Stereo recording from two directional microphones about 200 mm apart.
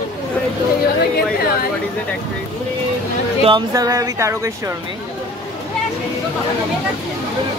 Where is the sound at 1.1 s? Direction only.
50° left (ahead or behind).